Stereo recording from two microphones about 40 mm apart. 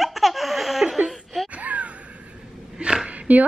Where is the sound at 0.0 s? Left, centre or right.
Centre.